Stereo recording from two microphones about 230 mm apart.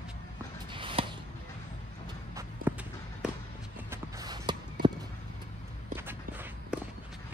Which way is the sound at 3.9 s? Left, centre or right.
Centre.